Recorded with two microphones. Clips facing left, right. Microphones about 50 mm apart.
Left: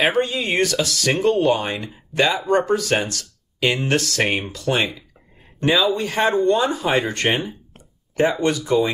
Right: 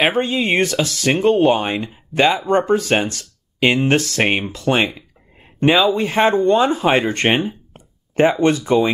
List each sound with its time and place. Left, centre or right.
0.0 s speech: right